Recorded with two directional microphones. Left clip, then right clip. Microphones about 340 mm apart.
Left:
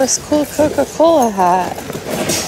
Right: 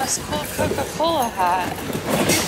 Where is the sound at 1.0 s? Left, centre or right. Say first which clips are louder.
Left 9 dB; centre.